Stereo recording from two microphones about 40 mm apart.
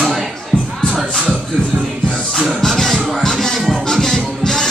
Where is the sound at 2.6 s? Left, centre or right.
Centre.